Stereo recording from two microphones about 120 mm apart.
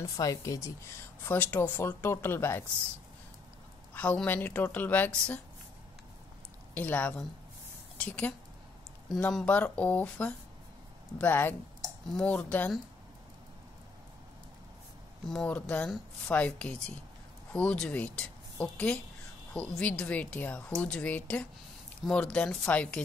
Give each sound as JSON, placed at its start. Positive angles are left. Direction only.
{"t": 0.0, "sound": "speech", "side_deg": 30}
{"t": 1.2, "sound": "speech", "side_deg": 15}
{"t": 3.9, "sound": "a woman's voice", "side_deg": 10}
{"t": 6.7, "sound": "a woman's voice", "side_deg": 15}
{"t": 12.1, "sound": "a woman's voice", "side_deg": 5}
{"t": 15.2, "sound": "a woman's voice", "side_deg": 5}